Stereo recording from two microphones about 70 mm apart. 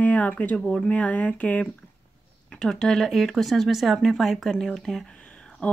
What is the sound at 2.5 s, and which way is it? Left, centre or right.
Speech, centre.